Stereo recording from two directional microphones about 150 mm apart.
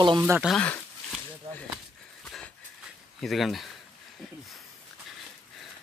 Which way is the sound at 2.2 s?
5° left (ahead or behind).